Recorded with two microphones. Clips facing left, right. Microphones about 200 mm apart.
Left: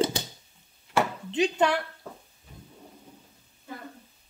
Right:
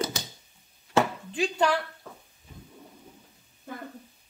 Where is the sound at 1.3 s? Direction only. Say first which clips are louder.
Left 2 dB; 20° left (ahead or behind).